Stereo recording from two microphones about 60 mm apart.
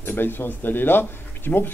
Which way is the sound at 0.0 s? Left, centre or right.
Left.